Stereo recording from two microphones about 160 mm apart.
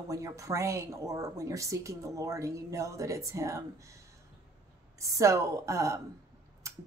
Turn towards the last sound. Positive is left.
turn(degrees=-20)  # may be behind; listen again after turning